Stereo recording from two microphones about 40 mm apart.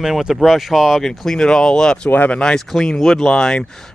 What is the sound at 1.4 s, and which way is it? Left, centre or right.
Speech, centre.